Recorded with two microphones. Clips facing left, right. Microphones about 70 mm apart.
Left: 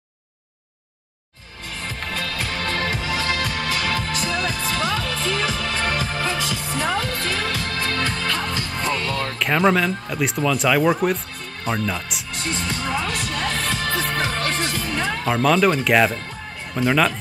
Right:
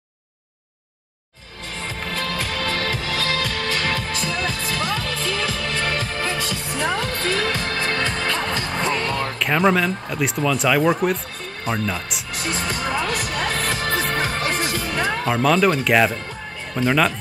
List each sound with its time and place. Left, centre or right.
2.7 s music: left
4.6 s music: centre
6.8 s music: centre
7.9 s music: right
9.4 s speech: centre
12.6 s music: centre
16.7 s speech: centre